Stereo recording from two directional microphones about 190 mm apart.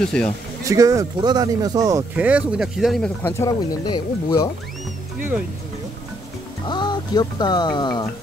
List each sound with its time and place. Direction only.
0.0 s speech: 5° left (ahead or behind)
0.7 s speech: 15° right (ahead or behind)
2.1 s speech: 5° right (ahead or behind); by 3.4 s 10° left (ahead or behind)
3.4 s speech: 20° left (ahead or behind)
6.7 s speech: 25° left (ahead or behind)